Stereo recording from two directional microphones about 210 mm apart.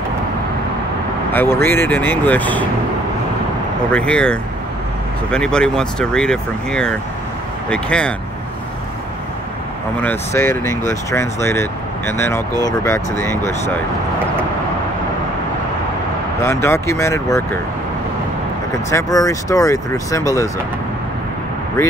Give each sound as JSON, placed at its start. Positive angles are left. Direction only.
{"t": 1.3, "sound": "speech", "side_deg": 10}
{"t": 3.9, "sound": "speech", "side_deg": 5}
{"t": 10.3, "sound": "speech", "side_deg": 10}
{"t": 16.6, "sound": "speech", "side_deg": 15}
{"t": 18.9, "sound": "speech", "side_deg": 15}